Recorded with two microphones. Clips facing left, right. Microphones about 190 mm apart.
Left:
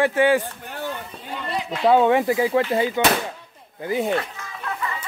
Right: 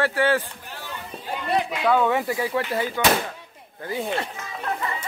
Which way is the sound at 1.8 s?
25° left (ahead or behind).